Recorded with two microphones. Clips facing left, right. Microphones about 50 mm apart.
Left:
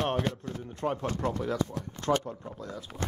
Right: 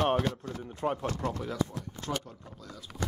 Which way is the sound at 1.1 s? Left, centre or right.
Left.